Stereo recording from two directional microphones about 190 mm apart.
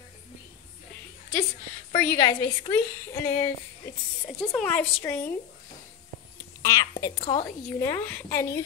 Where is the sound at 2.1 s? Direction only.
20° left (ahead or behind).